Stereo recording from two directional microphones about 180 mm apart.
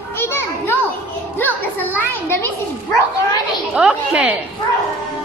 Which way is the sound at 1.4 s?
10° left (ahead or behind).